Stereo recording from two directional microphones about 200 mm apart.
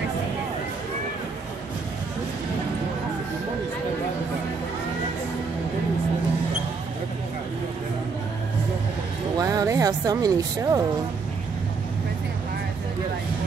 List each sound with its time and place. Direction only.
9.4 s speech: 15° right (ahead or behind)